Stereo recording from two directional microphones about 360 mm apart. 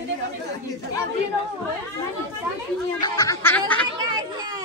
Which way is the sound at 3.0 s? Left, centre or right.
Centre.